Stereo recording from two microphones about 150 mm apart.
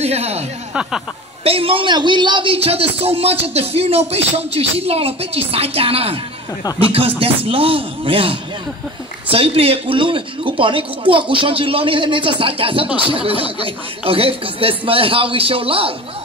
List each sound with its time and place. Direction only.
0.0 s a man's voice: 45° right (ahead or behind)
7.2 s a man's voice: 40° right (ahead or behind)